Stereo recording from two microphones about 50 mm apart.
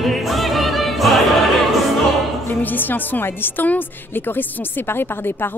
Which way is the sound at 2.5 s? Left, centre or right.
Left.